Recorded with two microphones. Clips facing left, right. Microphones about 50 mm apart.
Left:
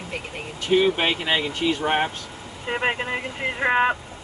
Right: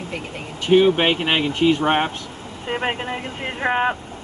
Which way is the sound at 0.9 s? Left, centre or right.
Right.